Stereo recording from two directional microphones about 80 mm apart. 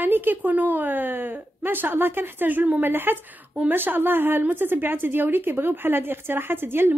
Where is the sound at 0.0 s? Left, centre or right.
Right.